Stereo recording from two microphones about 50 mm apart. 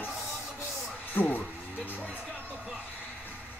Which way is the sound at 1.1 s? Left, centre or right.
Left.